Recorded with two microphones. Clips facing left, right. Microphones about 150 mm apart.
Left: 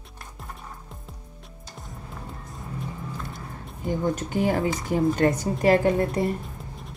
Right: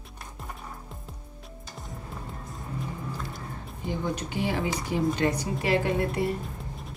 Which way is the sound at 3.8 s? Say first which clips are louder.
Left 5 dB; 45° left (ahead or behind).